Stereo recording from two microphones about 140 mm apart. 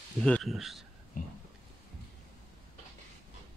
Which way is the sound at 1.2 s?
70° left (ahead or behind).